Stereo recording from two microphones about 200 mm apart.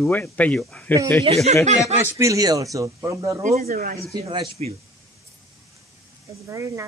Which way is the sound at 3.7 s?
45° right (ahead or behind).